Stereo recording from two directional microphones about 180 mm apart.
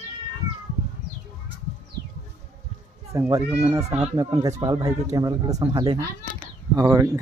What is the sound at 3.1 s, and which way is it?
Speech, 15° right (ahead or behind).